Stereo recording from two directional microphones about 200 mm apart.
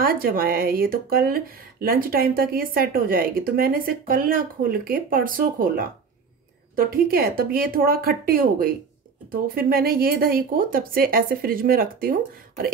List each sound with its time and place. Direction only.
0.0 s speech: 45° right (ahead or behind)